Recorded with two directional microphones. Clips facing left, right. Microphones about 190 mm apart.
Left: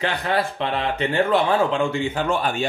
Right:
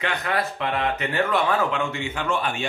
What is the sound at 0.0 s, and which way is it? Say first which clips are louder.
Speech: left 3 dB; 30° left (ahead or behind).